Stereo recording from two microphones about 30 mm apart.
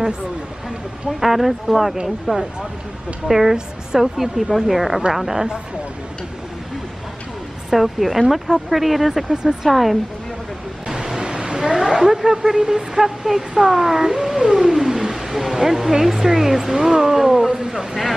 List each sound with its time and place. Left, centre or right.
1.2 s a woman's voice: centre
7.7 s a woman's voice: centre
9.3 s speech: right
9.7 s a woman's voice: centre
10.9 s vehicle: centre
11.3 s a sound: right
11.9 s speech: centre
14.6 s whale vocalization: centre
15.0 s speech: centre